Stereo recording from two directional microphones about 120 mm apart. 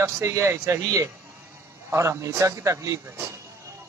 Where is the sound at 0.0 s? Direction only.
25° right (ahead or behind).